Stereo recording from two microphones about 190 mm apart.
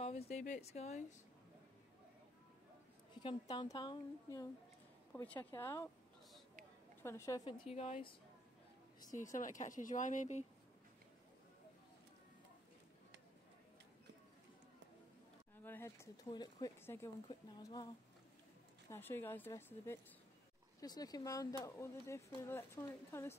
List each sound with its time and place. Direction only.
0.0 s a woman's voice: 35° left (ahead or behind)
3.2 s a woman's voice: 25° left (ahead or behind)
5.1 s speech: 10° left (ahead or behind)
7.0 s speech: 15° left (ahead or behind)
7.7 s speech: 35° left (ahead or behind)
9.1 s speech: 45° left (ahead or behind)
15.5 s a woman's voice: 10° left (ahead or behind)
18.9 s speech: 10° left (ahead or behind)